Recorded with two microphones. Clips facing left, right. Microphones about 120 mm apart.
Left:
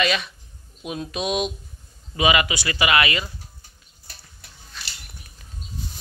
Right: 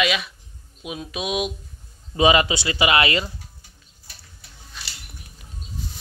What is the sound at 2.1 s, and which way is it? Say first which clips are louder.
Speech: right 3 dB; 30° right (ahead or behind).